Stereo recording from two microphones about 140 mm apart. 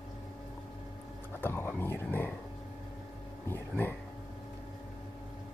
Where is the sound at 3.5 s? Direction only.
15° left (ahead or behind).